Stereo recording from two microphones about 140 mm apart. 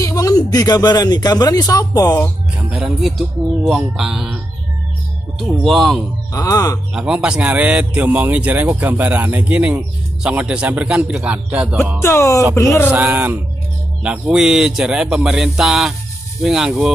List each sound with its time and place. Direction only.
0.0 s a sound: 25° left (ahead or behind)
0.5 s speech: 25° left (ahead or behind)
2.7 s speech: centre (ahead or behind)
5.4 s speech: centre (ahead or behind)
6.3 s speech: 25° left (ahead or behind)
6.9 s a man's voice: 5° right (ahead or behind)
12.0 s speech: 20° left (ahead or behind)
12.9 s a man's voice: 10° right (ahead or behind)